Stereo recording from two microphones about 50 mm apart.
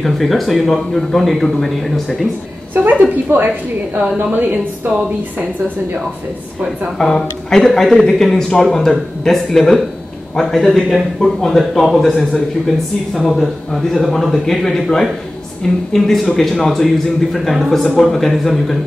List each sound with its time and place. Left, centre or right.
0.0 s speech: centre
2.7 s a woman's voice: right
7.0 s speech: centre
13.4 s speech: centre